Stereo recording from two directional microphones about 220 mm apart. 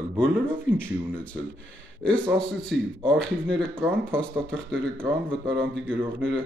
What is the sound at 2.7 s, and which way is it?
Speech, 50° right (ahead or behind).